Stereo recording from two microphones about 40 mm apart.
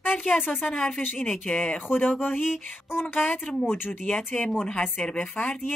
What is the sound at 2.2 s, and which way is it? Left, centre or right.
Speech, left.